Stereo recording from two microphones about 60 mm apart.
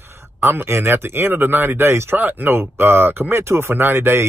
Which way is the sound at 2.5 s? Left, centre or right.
Right.